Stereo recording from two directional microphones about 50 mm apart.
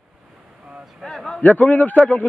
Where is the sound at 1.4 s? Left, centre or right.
Left.